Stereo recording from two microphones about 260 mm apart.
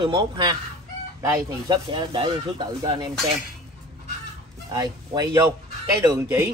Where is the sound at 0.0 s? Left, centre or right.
Centre.